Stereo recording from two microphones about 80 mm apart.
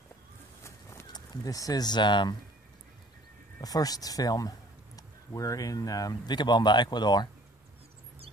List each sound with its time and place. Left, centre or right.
0.7 s horse: left
1.1 s speech: left
3.6 s a man's voice: left